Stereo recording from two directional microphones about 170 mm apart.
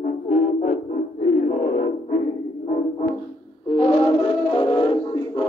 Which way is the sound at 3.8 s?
30° left (ahead or behind).